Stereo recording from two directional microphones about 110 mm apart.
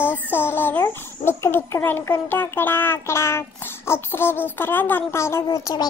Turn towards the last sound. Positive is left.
turn(degrees=40)  # may be behind; listen again after turning